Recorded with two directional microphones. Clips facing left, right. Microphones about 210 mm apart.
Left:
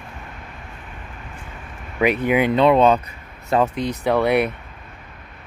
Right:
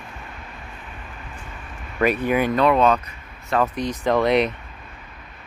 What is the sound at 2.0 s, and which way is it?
Speech, 15° left (ahead or behind).